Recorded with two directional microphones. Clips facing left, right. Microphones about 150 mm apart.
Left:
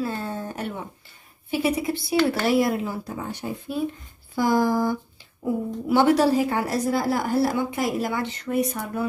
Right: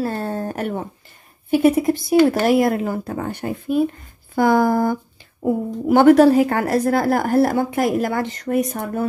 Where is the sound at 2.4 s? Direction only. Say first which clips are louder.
Right 5 dB; 50° right (ahead or behind).